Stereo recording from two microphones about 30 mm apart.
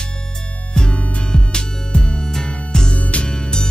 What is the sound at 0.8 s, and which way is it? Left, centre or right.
Music, left.